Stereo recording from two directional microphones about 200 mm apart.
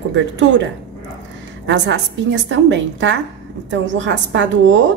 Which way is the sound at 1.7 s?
60° right (ahead or behind).